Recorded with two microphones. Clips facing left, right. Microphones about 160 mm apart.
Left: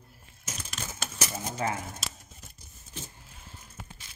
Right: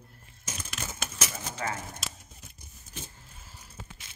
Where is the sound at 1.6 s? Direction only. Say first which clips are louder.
Left 3 dB; 25° left (ahead or behind).